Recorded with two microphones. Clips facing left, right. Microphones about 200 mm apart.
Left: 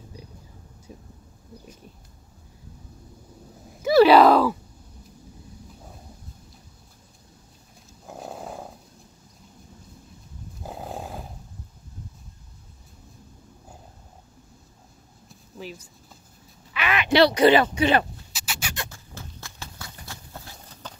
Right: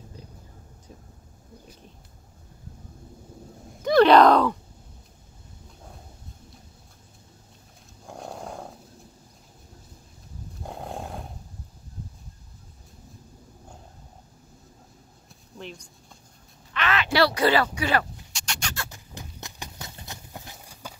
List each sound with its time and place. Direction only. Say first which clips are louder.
3.8 s a sound: left 1 dB; 5° left (ahead or behind)
8.1 s roaring cats: left 1 dB; 5° left (ahead or behind)
10.6 s roar: left 1 dB; centre (ahead or behind)
15.2 s a sound: left 2 dB; 5° left (ahead or behind)
16.7 s quack: left 3 dB; 15° left (ahead or behind)
18.3 s rodents: even; 5° left (ahead or behind)
18.9 s horse: even; 15° right (ahead or behind)